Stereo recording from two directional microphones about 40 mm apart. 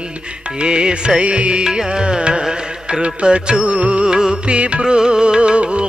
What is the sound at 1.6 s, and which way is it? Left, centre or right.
Music, right.